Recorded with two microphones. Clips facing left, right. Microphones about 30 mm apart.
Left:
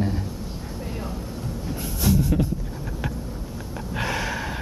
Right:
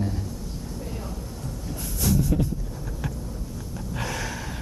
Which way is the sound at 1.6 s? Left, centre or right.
Left.